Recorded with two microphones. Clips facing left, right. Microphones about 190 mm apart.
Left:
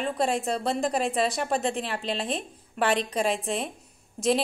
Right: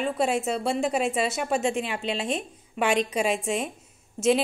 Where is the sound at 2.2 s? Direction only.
30° left (ahead or behind).